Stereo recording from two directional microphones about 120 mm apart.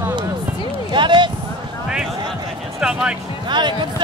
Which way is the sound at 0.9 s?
40° right (ahead or behind).